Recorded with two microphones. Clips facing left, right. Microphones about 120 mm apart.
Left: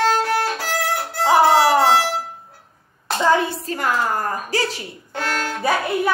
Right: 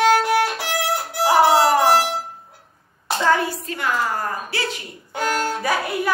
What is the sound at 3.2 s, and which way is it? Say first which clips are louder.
A woman's voice: left 2 dB; 20° left (ahead or behind).